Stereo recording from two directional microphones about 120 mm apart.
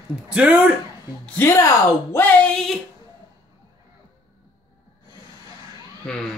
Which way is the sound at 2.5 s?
5° left (ahead or behind).